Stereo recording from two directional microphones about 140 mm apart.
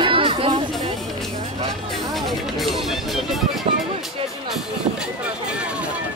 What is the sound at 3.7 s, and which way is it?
Speech, 45° right (ahead or behind).